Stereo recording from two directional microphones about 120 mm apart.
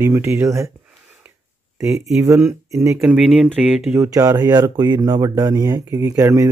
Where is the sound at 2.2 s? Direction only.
25° right (ahead or behind).